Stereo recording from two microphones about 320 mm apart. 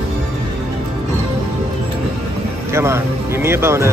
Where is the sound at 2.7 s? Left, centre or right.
Centre.